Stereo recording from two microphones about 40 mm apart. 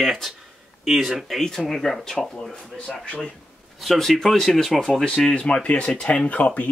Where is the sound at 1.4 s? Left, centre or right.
Centre.